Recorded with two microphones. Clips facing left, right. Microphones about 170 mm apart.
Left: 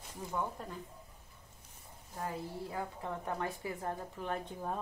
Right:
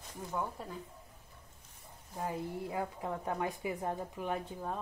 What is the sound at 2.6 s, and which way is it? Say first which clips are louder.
A woman's voice: right 2 dB; 15° right (ahead or behind).